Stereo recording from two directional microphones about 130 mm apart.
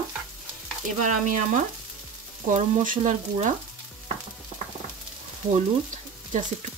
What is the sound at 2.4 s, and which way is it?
Frying, 70° right (ahead or behind).